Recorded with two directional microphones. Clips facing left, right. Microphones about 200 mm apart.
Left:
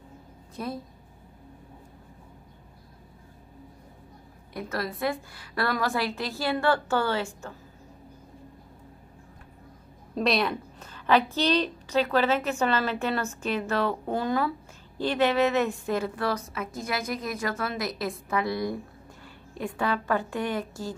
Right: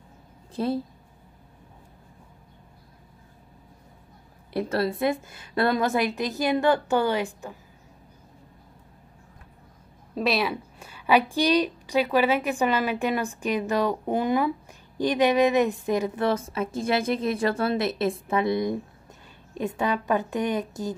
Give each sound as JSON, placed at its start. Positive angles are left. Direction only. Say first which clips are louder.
{"t": 0.6, "sound": "a woman's voice", "louder": "right 8 dB", "side_deg": -30}
{"t": 4.6, "sound": "a woman's voice", "louder": "right 6 dB", "side_deg": -30}
{"t": 10.1, "sound": "a woman's voice", "louder": "even", "side_deg": -5}